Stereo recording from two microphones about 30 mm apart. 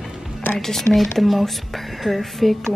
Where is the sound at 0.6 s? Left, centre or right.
Centre.